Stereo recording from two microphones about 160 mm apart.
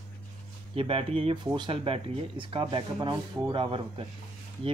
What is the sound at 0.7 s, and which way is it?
Speech, 35° right (ahead or behind).